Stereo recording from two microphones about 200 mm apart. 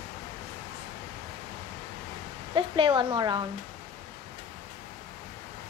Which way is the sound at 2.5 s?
25° right (ahead or behind).